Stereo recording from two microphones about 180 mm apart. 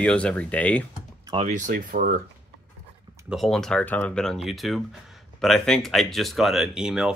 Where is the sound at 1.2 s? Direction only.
30° right (ahead or behind).